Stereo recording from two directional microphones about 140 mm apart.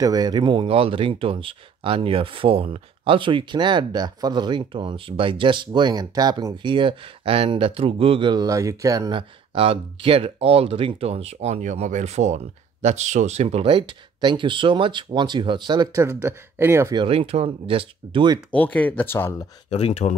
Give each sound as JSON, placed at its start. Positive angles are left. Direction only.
{"t": 0.0, "sound": "speech", "side_deg": -30}
{"t": 9.5, "sound": "speech", "side_deg": -40}
{"t": 15.9, "sound": "speech", "side_deg": -20}
{"t": 16.9, "sound": "speech", "side_deg": -40}
{"t": 18.5, "sound": "speech", "side_deg": 10}
{"t": 19.7, "sound": "speech", "side_deg": 50}